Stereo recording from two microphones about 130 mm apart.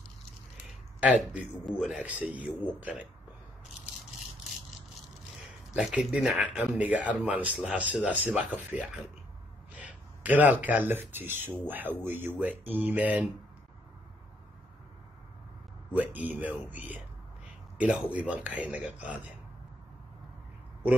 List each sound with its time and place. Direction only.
1.0 s speech: 10° right (ahead or behind)
1.7 s speech: centre (ahead or behind)
2.0 s speech: 10° right (ahead or behind)
5.8 s speech: centre (ahead or behind)
15.9 s speech: 15° right (ahead or behind)